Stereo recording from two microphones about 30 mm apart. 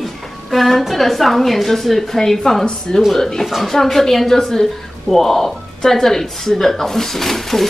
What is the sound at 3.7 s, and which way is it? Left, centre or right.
Speech, centre.